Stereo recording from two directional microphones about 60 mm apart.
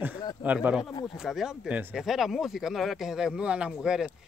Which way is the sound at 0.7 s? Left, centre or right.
Centre.